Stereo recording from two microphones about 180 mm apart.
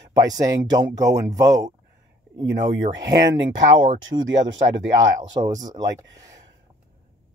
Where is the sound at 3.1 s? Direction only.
20° right (ahead or behind).